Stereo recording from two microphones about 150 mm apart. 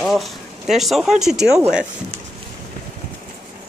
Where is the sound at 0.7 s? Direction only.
Centre (ahead or behind).